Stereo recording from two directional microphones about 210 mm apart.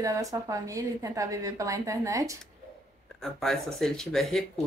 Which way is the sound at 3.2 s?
Centre (ahead or behind).